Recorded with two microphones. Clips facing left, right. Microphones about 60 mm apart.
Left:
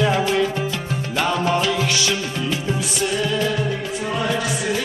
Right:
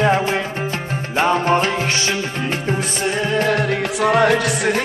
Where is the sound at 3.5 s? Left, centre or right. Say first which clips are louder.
Right 5 dB; right.